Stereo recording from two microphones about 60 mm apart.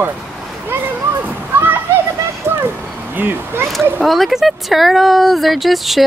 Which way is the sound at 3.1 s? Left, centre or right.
Right.